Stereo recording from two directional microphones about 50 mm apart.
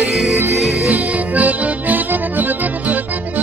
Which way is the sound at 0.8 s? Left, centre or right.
Right.